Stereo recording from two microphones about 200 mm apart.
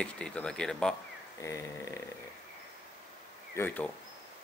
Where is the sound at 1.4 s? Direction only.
15° left (ahead or behind).